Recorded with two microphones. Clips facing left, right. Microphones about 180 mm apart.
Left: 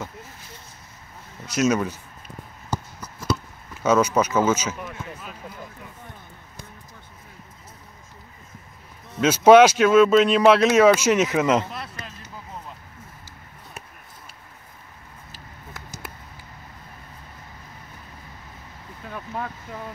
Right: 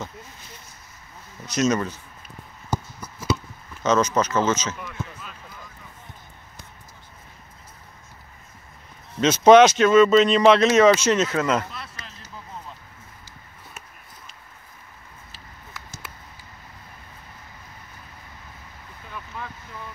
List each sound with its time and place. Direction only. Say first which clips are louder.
1.4 s speech: left 1 dB; 5° left (ahead or behind)
2.7 s a sound: right 1 dB; 5° right (ahead or behind)
3.8 s speech: left 1 dB; 10° left (ahead or behind)
9.2 s speech: even; 10° left (ahead or behind)
11.7 s a sound: left 4 dB; 45° left (ahead or behind)
19.1 s boat: left 5 dB; 45° left (ahead or behind)